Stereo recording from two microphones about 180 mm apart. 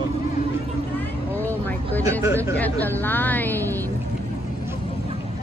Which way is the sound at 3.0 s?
10° left (ahead or behind).